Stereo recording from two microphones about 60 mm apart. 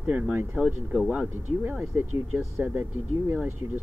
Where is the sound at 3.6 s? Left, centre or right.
Right.